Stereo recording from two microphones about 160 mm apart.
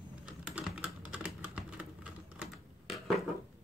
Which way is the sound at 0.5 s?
5° right (ahead or behind).